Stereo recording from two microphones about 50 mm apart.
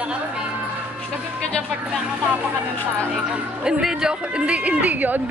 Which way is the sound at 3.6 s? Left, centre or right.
Centre.